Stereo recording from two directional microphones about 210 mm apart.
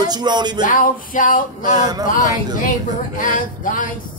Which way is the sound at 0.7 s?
40° left (ahead or behind).